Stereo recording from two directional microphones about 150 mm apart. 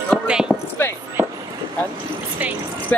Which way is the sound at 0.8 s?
15° left (ahead or behind).